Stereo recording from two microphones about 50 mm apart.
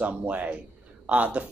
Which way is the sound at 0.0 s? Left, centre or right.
Right.